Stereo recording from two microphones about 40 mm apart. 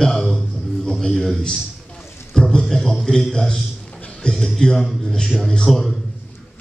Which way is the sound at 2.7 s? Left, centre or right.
Centre.